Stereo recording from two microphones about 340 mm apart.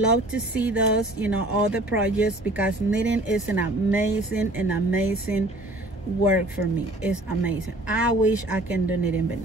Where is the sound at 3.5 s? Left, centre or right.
Left.